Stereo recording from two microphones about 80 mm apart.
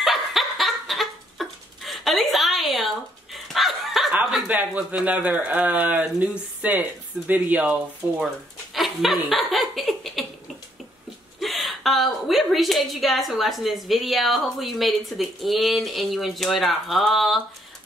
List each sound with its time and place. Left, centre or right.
0.0 s a sound: centre
4.5 s speech: centre
8.7 s laughter: centre
11.3 s a woman's voice: centre